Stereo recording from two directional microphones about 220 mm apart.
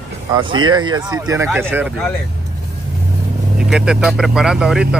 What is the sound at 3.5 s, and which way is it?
Speech, 5° right (ahead or behind).